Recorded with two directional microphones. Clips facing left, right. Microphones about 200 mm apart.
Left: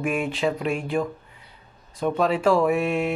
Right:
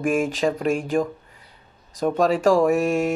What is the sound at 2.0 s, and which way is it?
Speech, 45° right (ahead or behind).